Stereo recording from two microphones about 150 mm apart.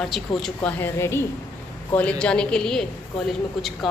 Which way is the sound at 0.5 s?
15° left (ahead or behind).